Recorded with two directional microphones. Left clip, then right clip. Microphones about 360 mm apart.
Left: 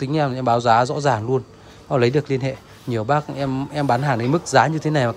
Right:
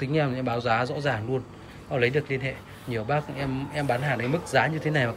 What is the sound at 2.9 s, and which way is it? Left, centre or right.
Speech, centre.